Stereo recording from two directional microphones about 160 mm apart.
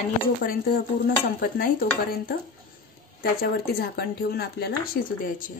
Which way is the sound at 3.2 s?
70° left (ahead or behind).